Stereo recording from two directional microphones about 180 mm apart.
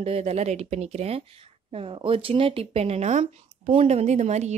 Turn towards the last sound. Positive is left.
turn(degrees=-40)  # may be behind; listen again after turning